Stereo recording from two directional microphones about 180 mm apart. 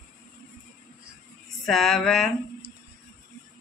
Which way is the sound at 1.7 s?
Centre (ahead or behind).